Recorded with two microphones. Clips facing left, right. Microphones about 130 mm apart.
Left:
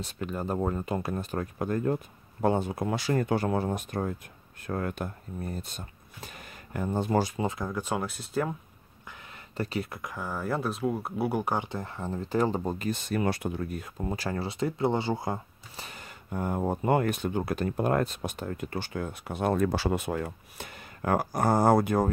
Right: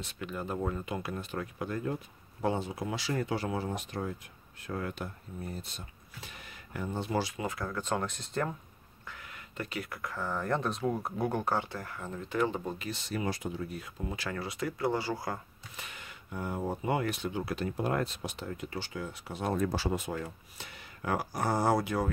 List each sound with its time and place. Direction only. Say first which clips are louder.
0.0 s speech: left 5 dB; 40° left (ahead or behind)
7.3 s speech: left 4 dB; 25° left (ahead or behind); by 8.5 s 5° left (ahead or behind)
9.6 s speech: left 5 dB; 30° left (ahead or behind); by 22.1 s 50° left (ahead or behind)